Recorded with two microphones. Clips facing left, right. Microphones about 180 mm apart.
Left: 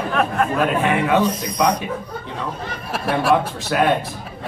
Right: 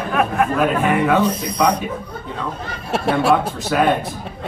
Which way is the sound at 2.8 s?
25° right (ahead or behind).